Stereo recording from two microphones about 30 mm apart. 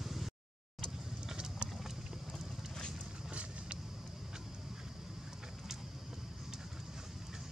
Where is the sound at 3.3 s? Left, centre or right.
Right.